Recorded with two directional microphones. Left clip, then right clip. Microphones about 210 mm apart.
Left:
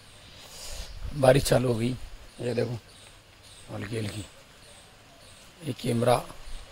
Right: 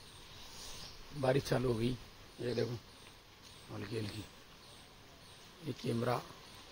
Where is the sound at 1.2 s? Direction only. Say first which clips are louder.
Left 13 dB; 50° left (ahead or behind).